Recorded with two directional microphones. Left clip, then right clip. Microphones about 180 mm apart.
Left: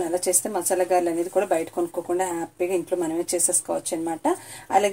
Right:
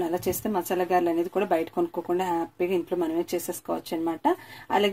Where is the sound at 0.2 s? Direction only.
40° right (ahead or behind).